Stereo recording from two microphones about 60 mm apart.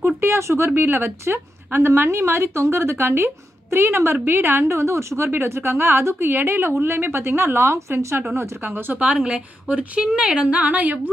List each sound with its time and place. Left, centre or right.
0.2 s a sound: right
0.7 s a woman's voice: right
8.4 s a woman's voice: right